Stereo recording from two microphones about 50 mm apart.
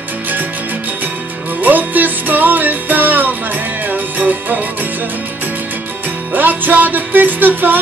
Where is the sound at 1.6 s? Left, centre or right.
Right.